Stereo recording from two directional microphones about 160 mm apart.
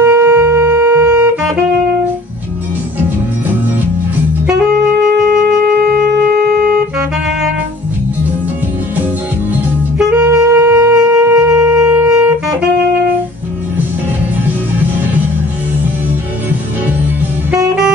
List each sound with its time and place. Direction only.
0.0 s music: 10° right (ahead or behind)
4.6 s saxophone: 5° right (ahead or behind)
6.1 s wind instrument: 5° right (ahead or behind)
9.5 s wind instrument: 5° right (ahead or behind)